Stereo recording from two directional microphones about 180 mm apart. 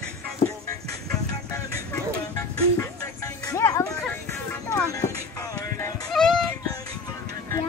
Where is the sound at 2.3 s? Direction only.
20° left (ahead or behind).